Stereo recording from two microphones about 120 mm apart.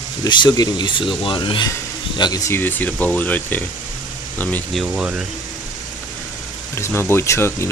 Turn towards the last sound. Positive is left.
turn(degrees=25)  # may be behind; listen again after turning